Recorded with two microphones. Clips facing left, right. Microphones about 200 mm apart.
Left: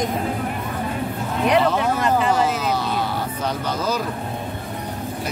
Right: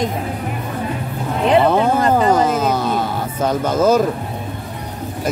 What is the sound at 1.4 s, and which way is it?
Speech, 30° right (ahead or behind).